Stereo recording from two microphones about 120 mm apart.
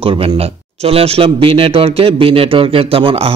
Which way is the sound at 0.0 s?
50° right (ahead or behind).